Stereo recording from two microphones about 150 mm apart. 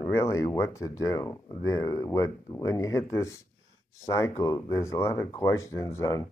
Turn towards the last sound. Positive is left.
turn(degrees=20)  # may be behind; listen again after turning